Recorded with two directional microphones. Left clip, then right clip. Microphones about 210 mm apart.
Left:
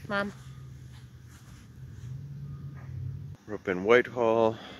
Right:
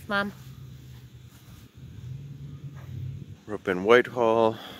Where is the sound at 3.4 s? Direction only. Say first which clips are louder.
Right 3 dB; 5° right (ahead or behind).